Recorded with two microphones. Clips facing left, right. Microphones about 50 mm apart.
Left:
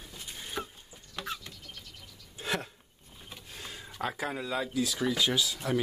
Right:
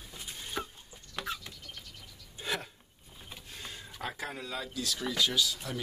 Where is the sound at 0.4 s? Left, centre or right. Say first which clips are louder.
Even; centre.